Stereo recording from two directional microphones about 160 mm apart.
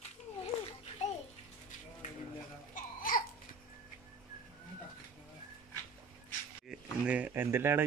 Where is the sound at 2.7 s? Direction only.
55° left (ahead or behind).